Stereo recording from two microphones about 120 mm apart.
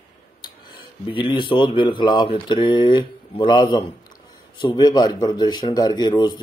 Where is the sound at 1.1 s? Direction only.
45° left (ahead or behind).